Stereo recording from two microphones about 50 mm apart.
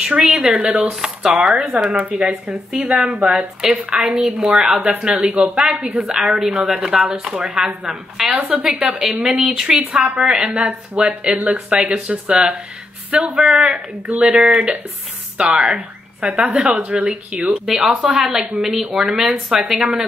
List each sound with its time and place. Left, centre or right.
0.0 s speech: right
2.4 s a woman's voice: centre
3.2 s speech: right
3.9 s speech: centre
4.7 s speech: right
5.9 s speech: centre
16.8 s speech: right
17.6 s a woman's voice: centre